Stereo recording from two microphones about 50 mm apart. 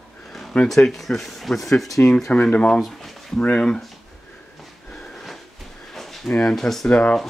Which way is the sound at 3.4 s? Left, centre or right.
Left.